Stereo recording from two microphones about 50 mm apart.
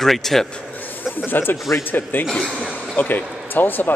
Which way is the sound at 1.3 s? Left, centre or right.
Left.